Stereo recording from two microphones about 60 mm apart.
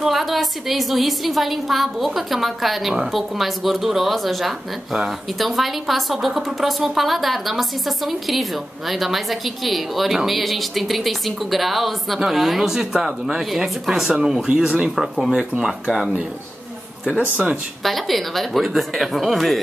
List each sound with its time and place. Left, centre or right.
0.0 s a woman's voice: centre
17.8 s a woman's voice: centre